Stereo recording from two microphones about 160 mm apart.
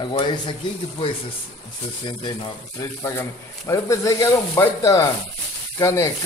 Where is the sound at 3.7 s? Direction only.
20° left (ahead or behind).